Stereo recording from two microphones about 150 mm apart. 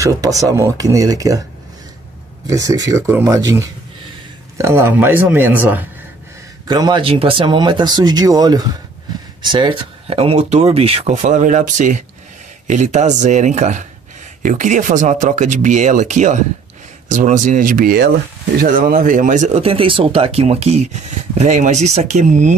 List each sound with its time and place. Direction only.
0.0 s speech: 25° right (ahead or behind)
2.4 s speech: 25° right (ahead or behind)
6.7 s speech: 30° right (ahead or behind); by 22.6 s 50° right (ahead or behind)